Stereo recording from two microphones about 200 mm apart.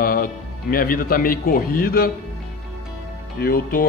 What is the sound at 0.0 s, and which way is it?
A man's voice, 45° left (ahead or behind).